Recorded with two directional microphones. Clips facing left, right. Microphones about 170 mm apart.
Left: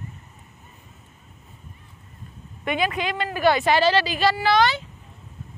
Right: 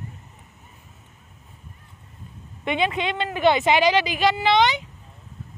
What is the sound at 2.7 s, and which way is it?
A woman's voice, 25° right (ahead or behind).